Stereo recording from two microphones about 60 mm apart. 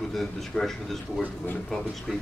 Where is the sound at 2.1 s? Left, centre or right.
Centre.